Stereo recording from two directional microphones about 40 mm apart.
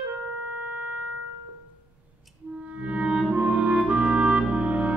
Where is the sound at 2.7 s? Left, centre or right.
Right.